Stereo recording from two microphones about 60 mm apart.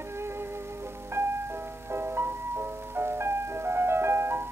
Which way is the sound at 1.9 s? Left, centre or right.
Right.